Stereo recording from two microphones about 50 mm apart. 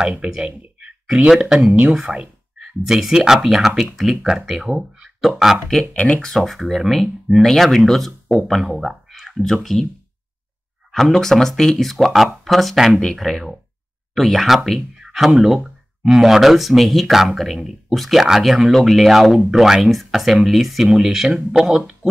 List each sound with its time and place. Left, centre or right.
0.7 s a sound: centre
1.4 s speech: centre
5.9 s speech: left
6.2 s speech: centre
10.9 s speech: centre